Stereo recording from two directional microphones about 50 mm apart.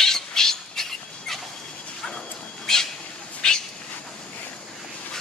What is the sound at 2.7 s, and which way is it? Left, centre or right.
Cat, centre.